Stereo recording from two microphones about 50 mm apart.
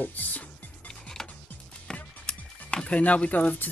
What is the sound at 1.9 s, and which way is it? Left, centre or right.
Music, centre.